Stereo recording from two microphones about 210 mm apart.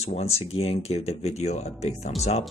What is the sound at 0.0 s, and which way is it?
Speech, 30° left (ahead or behind).